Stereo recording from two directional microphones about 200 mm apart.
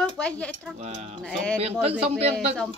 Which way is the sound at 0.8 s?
35° right (ahead or behind).